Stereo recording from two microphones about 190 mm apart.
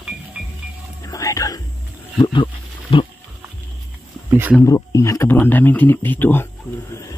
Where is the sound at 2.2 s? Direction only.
25° left (ahead or behind).